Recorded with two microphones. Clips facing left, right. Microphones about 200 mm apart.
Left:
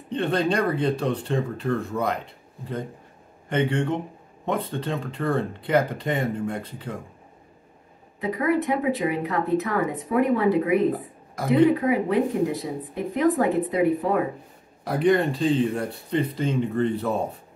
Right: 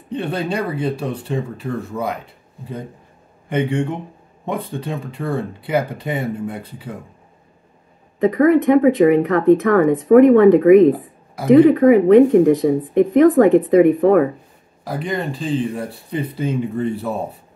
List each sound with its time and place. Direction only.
0.1 s speech: 10° right (ahead or behind)
8.2 s speech: 80° right
14.9 s speech: centre (ahead or behind)